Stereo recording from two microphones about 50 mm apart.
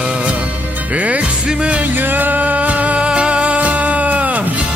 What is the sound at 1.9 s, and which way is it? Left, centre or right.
Music, right.